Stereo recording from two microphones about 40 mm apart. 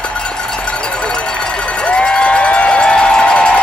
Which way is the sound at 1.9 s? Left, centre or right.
Left.